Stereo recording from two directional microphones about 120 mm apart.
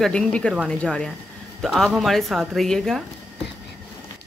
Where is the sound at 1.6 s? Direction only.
Centre (ahead or behind).